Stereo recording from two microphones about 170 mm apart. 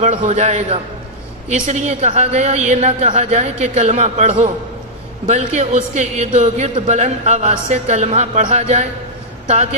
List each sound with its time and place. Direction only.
0.0 s a woman's voice: 45° right (ahead or behind)